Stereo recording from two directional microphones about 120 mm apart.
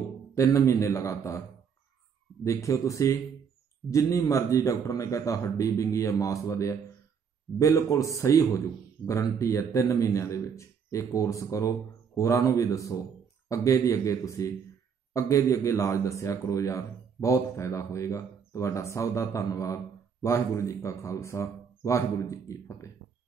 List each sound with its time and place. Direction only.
0.3 s speech: 25° left (ahead or behind)
2.4 s speech: 25° left (ahead or behind)